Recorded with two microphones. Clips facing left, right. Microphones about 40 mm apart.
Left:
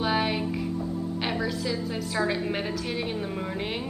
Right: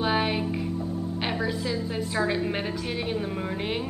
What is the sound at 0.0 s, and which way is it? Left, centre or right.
Music, centre.